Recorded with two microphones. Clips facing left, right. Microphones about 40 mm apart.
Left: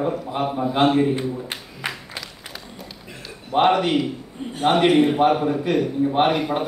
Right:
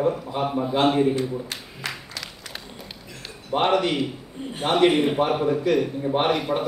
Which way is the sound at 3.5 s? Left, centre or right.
Centre.